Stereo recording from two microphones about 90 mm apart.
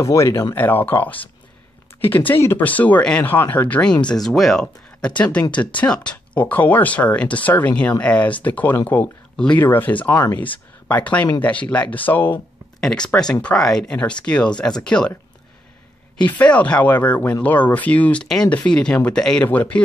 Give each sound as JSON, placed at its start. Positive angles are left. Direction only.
{"t": 0.0, "sound": "speech", "side_deg": 35}
{"t": 0.6, "sound": "speech", "side_deg": 20}
{"t": 12.8, "sound": "speech", "side_deg": 10}
{"t": 16.2, "sound": "speech", "side_deg": 15}